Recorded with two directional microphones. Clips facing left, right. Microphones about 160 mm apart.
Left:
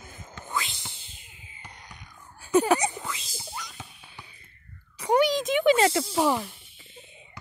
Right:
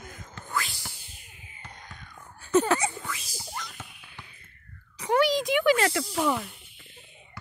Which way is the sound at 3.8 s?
30° left (ahead or behind).